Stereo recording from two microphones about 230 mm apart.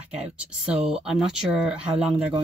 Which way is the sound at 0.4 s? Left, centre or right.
Centre.